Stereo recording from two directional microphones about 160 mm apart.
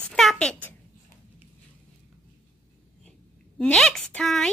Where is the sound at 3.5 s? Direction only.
5° left (ahead or behind).